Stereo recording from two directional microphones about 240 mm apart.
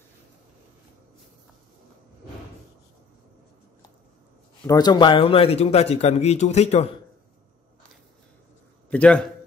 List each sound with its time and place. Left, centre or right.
4.6 s a man's voice: centre
8.9 s a man's voice: centre